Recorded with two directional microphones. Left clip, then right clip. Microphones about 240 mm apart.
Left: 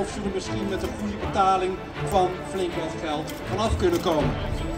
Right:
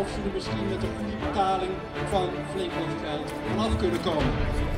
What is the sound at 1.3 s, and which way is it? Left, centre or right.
Speech, left.